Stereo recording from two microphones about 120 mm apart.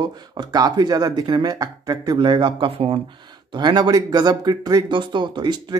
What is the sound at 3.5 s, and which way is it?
Speech, 40° right (ahead or behind).